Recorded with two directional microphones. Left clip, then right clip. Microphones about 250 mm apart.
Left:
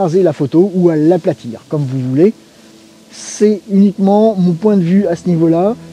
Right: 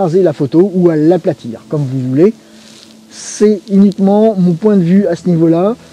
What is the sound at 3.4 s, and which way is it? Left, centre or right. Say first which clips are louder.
Speech: right 2 dB; centre.